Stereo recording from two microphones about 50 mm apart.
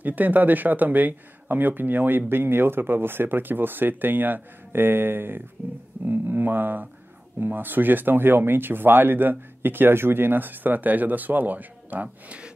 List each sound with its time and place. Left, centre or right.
0.0 s speech: right